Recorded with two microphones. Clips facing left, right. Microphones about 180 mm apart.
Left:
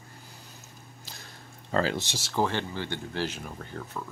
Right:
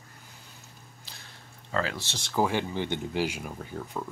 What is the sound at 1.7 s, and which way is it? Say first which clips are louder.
Speech: left 4 dB; 30° left (ahead or behind).